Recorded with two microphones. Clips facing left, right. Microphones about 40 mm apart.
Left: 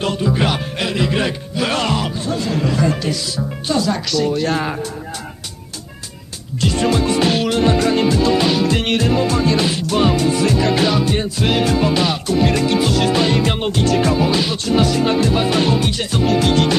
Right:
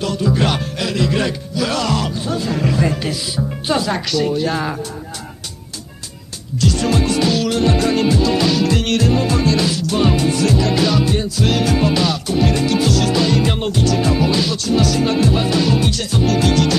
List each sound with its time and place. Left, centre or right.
0.2 s speech: centre
1.6 s music: left
2.5 s music: centre
3.0 s speech: centre
6.6 s music: left
13.7 s music: left
14.3 s music: left